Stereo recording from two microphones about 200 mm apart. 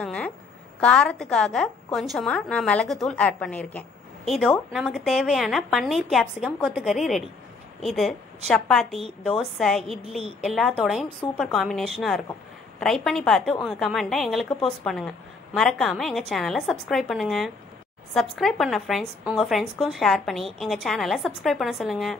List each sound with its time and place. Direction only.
0.0 s a woman's voice: 5° left (ahead or behind)
10.0 s a woman's voice: 30° right (ahead or behind)
10.4 s speech: centre (ahead or behind)